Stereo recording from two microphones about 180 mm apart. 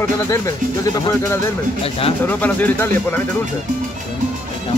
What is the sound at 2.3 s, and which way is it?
Speech, 10° left (ahead or behind).